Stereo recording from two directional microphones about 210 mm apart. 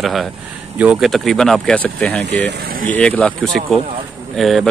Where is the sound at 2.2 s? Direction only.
55° right (ahead or behind).